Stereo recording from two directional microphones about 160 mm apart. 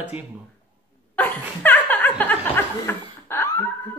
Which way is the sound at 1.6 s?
10° left (ahead or behind).